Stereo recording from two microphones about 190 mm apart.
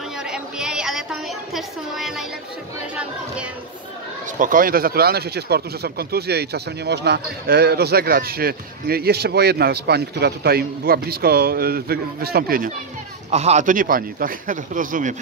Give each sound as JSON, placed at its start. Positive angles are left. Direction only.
{"t": 0.3, "sound": "a sound", "side_deg": -5}
{"t": 4.4, "sound": "speech", "side_deg": -45}
{"t": 13.3, "sound": "a man's voice", "side_deg": -35}